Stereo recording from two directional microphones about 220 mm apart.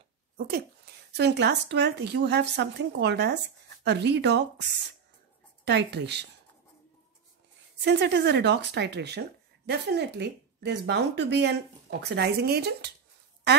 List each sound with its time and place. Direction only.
0.4 s a woman's voice: 45° right (ahead or behind)
5.7 s a woman's voice: 50° right (ahead or behind)
7.8 s a woman's voice: 50° right (ahead or behind)